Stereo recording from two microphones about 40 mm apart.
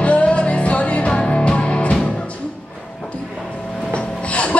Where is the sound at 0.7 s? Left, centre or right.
Left.